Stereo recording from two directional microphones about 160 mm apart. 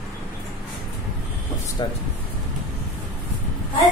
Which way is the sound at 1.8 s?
25° left (ahead or behind).